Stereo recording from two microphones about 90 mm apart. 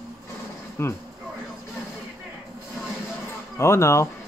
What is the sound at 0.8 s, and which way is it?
Speech, 30° left (ahead or behind).